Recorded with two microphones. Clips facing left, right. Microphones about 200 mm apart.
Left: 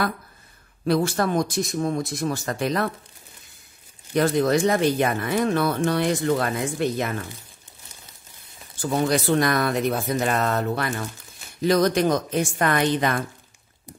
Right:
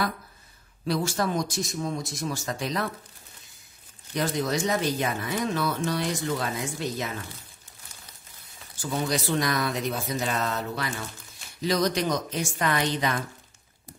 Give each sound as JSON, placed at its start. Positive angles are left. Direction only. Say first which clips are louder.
{"t": 0.8, "sound": "speech", "louder": "left 5 dB", "side_deg": 55}
{"t": 4.1, "sound": "speech", "louder": "left 7 dB", "side_deg": 55}
{"t": 8.8, "sound": "speech", "louder": "left 6 dB", "side_deg": 55}